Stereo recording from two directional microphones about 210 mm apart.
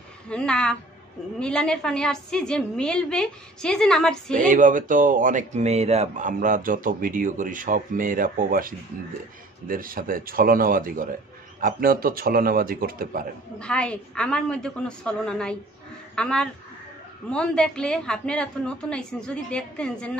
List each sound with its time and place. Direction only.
0.3 s a woman's voice: 5° left (ahead or behind)
4.3 s speech: 40° right (ahead or behind)
13.6 s a woman's voice: 5° left (ahead or behind)